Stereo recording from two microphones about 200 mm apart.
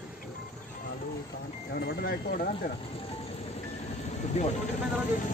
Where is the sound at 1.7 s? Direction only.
55° left (ahead or behind).